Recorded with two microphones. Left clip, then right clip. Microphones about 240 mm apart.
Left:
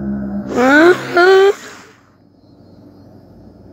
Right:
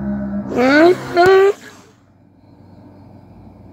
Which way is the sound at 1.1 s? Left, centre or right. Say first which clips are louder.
Left 1 dB; left.